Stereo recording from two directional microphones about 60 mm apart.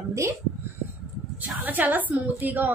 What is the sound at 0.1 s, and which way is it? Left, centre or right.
Speech, right.